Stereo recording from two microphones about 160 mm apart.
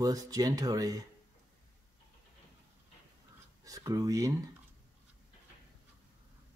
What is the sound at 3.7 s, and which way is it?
Speech, 20° right (ahead or behind).